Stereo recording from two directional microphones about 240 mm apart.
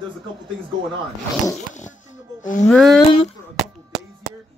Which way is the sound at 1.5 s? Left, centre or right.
Left.